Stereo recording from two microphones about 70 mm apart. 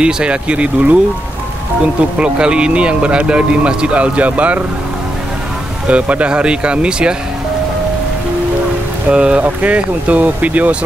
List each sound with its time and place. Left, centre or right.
0.0 s speech: centre
2.1 s speech: centre
5.9 s speech: centre
9.1 s speech: centre